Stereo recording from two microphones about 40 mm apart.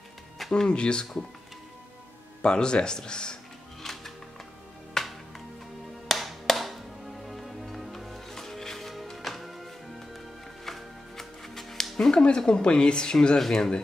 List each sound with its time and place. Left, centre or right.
0.5 s speech: left
2.4 s speech: left
3.8 s music: centre
13.5 s speech: centre